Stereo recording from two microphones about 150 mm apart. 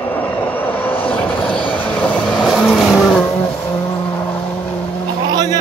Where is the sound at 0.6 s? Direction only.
10° left (ahead or behind).